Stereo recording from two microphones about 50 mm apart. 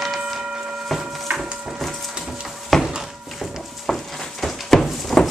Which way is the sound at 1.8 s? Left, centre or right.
Centre.